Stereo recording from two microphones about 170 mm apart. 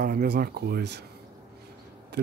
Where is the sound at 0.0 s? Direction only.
60° right (ahead or behind).